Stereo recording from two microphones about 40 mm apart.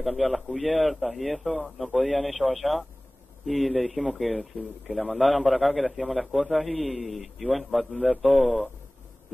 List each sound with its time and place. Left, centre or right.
0.0 s a man's voice: centre